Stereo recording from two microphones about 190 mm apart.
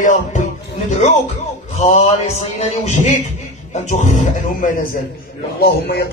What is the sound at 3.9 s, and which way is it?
Speech, 40° left (ahead or behind).